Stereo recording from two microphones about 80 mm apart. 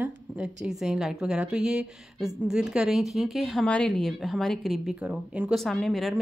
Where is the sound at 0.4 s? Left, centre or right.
Centre.